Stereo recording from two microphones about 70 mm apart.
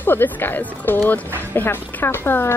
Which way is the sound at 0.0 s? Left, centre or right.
Left.